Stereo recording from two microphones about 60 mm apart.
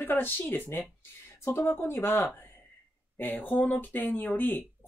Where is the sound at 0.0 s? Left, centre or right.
Left.